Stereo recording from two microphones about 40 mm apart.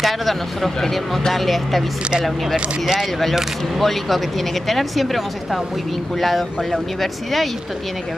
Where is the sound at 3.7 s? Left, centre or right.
Centre.